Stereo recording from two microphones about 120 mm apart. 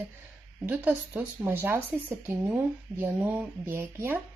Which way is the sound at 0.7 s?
15° right (ahead or behind).